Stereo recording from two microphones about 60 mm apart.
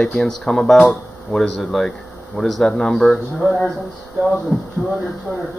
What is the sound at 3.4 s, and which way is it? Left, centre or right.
Speech, left.